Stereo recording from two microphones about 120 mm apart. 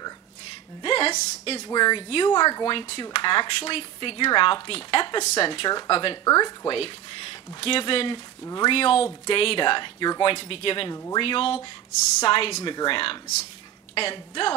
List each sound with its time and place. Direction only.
0.8 s a sound: 45° left (ahead or behind)
1.1 s speech: 55° left (ahead or behind)
1.6 s speech: 35° left (ahead or behind)
2.7 s speech: 45° left (ahead or behind)
5.2 s speech: 65° left (ahead or behind)
5.5 s speech: 40° left (ahead or behind)
6.2 s speech: 30° left (ahead or behind)
6.7 s speech: 50° left (ahead or behind)
10.3 s speech: 50° left (ahead or behind)